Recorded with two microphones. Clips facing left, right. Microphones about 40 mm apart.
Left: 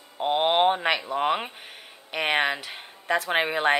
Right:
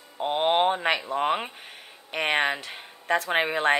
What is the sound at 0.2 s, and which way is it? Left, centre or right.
Speech, left.